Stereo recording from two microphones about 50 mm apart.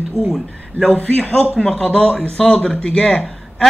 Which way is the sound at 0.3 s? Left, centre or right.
Centre.